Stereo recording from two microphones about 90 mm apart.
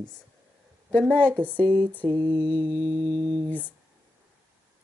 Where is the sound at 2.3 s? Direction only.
65° right (ahead or behind).